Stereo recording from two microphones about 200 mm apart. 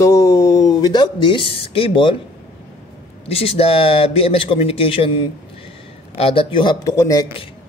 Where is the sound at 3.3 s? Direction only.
30° left (ahead or behind).